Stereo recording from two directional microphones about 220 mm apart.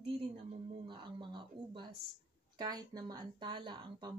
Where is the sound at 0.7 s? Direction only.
20° right (ahead or behind).